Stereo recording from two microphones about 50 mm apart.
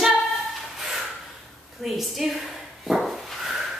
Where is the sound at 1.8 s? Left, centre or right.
Centre.